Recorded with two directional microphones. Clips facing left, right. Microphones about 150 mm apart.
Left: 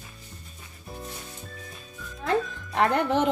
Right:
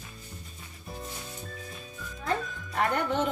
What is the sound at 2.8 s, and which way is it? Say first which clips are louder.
Speech: left 5 dB; 80° left.